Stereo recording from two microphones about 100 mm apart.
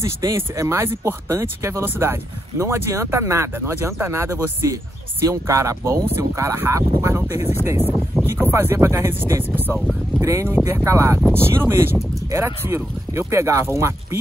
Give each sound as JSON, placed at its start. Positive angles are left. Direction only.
{"t": 0.0, "sound": "speech", "side_deg": -30}
{"t": 9.8, "sound": "speech", "side_deg": 0}
{"t": 10.2, "sound": "speech", "side_deg": -30}